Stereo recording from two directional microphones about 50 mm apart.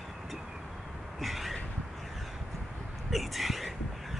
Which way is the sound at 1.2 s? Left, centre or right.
Centre.